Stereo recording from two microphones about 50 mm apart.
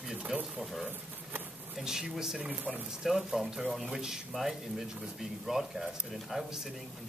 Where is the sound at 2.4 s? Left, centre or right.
Right.